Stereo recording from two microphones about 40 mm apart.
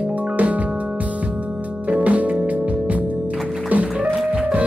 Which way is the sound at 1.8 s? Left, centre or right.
Right.